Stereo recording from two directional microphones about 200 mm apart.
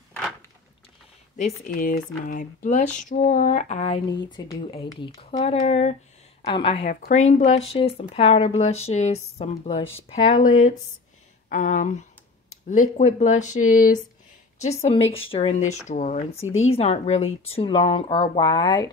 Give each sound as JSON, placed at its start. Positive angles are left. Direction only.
{"t": 1.4, "sound": "speech", "side_deg": 45}
{"t": 6.9, "sound": "speech", "side_deg": 40}
{"t": 16.4, "sound": "speech", "side_deg": 80}
{"t": 16.7, "sound": "speech", "side_deg": 30}